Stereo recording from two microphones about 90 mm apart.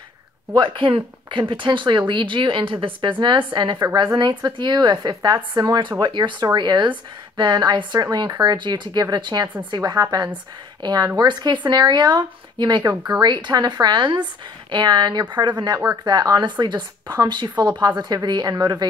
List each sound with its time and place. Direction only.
0.6 s speech: 70° right (ahead or behind)
4.9 s speech: 45° right (ahead or behind)